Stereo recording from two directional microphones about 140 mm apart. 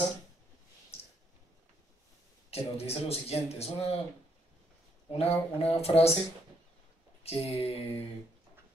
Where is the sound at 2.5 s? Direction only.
45° left (ahead or behind).